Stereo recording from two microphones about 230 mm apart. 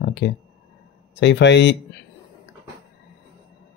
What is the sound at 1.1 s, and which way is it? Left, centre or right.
Speech, left.